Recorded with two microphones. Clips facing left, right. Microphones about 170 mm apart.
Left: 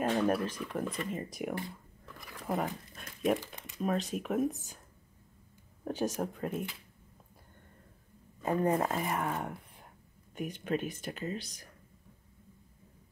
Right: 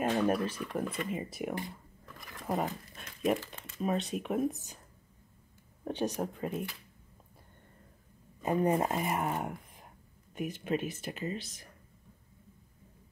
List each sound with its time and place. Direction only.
0.0 s speech: centre (ahead or behind)
2.1 s a sound: 5° left (ahead or behind)
2.6 s speech: centre (ahead or behind)
3.3 s speech: 15° left (ahead or behind)
3.8 s speech: centre (ahead or behind)
5.9 s speech: centre (ahead or behind)
8.4 s speech: 15° right (ahead or behind)